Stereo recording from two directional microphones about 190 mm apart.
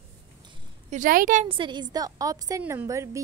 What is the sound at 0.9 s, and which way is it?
Speech, 45° right (ahead or behind).